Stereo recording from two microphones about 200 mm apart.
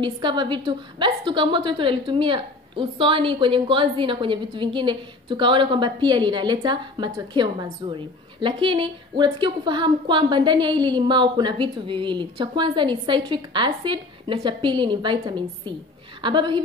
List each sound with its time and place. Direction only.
0.0 s a woman's voice: 25° right (ahead or behind)